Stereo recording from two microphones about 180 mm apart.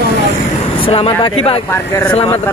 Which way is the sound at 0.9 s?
30° left (ahead or behind).